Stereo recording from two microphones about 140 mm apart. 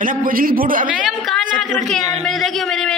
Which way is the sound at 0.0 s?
80° right.